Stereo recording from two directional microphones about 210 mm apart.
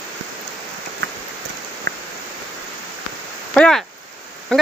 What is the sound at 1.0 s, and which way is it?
Rain, 55° right (ahead or behind).